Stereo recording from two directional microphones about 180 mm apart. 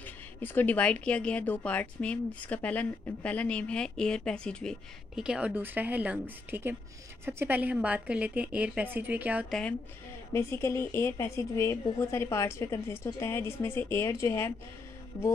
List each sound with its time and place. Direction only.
0.0 s a woman's voice: 10° left (ahead or behind); by 9.5 s 10° right (ahead or behind)
9.5 s a woman's voice: 5° left (ahead or behind)